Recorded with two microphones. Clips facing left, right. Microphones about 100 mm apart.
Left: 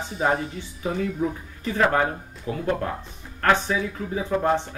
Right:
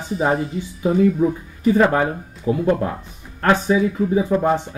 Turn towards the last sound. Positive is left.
turn(degrees=-15)  # may be behind; listen again after turning